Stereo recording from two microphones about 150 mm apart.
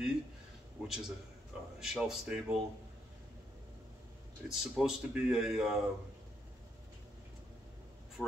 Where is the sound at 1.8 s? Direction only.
5° right (ahead or behind).